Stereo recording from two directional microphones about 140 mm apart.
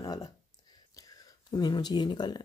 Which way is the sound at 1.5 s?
30° left (ahead or behind).